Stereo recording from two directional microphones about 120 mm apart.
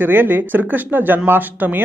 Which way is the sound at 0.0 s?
15° right (ahead or behind).